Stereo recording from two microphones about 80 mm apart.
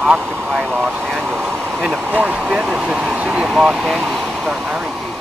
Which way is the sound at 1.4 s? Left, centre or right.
Centre.